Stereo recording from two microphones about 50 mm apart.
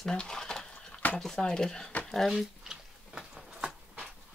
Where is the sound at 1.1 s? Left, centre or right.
Centre.